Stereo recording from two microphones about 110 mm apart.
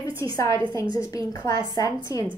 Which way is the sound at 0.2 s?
30° left (ahead or behind).